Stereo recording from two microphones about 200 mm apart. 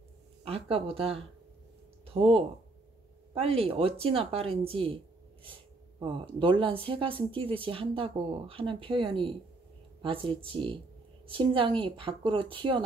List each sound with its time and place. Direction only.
0.4 s speech: 30° right (ahead or behind)